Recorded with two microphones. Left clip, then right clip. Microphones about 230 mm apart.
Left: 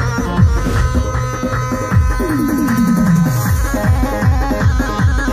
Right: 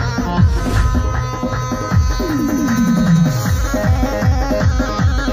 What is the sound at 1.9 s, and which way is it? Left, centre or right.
Music, right.